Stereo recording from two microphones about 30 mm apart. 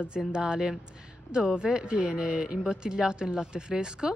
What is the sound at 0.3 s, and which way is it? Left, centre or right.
Speech, right.